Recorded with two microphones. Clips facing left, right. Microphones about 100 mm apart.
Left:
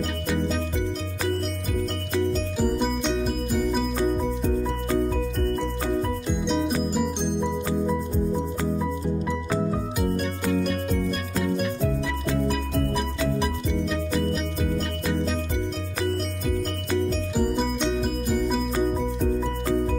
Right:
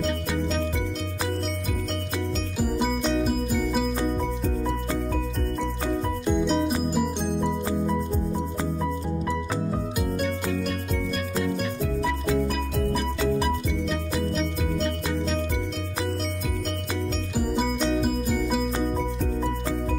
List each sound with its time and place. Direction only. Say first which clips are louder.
2.6 s music: even; 5° right (ahead or behind)
6.4 s music: left 3 dB; centre (ahead or behind)
11.4 s music: left 2 dB; centre (ahead or behind)
17.4 s music: even; 5° right (ahead or behind)